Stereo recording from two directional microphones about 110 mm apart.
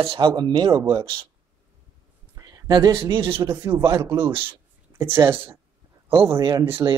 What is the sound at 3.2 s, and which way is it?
Speech, 55° right (ahead or behind).